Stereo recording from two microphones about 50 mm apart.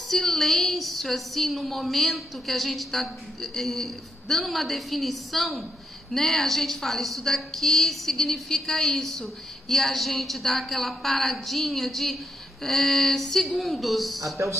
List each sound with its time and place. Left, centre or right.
0.1 s a woman's voice: centre
14.3 s speech: right